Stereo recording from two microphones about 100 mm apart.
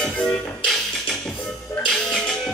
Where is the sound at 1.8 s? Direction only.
5° left (ahead or behind).